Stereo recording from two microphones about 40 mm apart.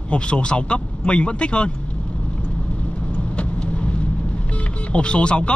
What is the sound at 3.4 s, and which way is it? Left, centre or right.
Vehicle, left.